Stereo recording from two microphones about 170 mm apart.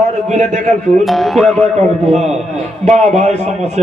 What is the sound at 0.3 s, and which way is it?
Speech, 40° right (ahead or behind).